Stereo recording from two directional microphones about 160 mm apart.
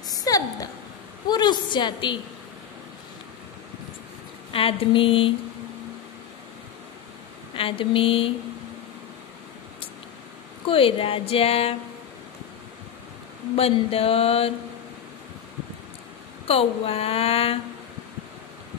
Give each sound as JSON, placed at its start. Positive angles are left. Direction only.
{"t": 0.1, "sound": "a sound", "side_deg": 20}
{"t": 1.3, "sound": "a woman's voice", "side_deg": 25}
{"t": 4.5, "sound": "a woman's voice", "side_deg": 35}
{"t": 7.5, "sound": "a woman's voice", "side_deg": 35}
{"t": 10.7, "sound": "a woman's voice", "side_deg": 35}
{"t": 13.6, "sound": "a woman's voice", "side_deg": 40}
{"t": 16.4, "sound": "a woman's voice", "side_deg": 40}